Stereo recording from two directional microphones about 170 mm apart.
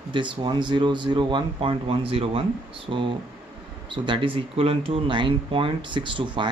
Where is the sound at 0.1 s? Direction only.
30° right (ahead or behind).